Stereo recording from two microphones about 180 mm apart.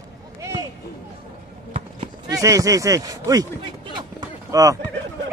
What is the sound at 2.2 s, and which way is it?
Speech, 20° right (ahead or behind).